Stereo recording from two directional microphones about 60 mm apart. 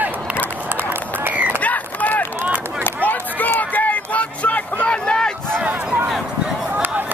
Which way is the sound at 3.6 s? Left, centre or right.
Left.